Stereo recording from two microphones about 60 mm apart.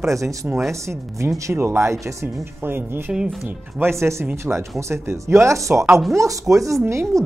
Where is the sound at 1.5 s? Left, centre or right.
Right.